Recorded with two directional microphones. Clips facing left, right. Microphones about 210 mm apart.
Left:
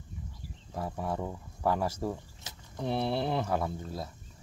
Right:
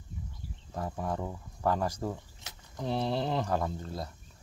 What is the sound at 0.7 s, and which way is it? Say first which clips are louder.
Speech: even; 10° left (ahead or behind).